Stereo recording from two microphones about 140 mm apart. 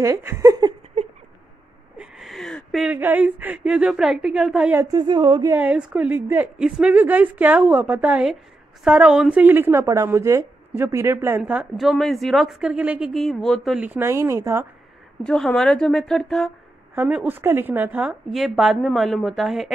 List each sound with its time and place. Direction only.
0.0 s a sound: 20° right (ahead or behind)
2.0 s speech: centre (ahead or behind)
4.9 s a sound: 30° right (ahead or behind)
5.5 s a woman's voice: 10° right (ahead or behind)
11.7 s speech: centre (ahead or behind)
13.7 s a woman's voice: 15° right (ahead or behind)
15.2 s speech: 5° left (ahead or behind)
16.9 s a woman's voice: 10° right (ahead or behind)